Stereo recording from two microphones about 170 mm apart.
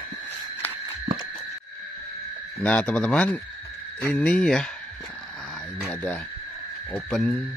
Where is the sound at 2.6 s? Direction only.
10° left (ahead or behind).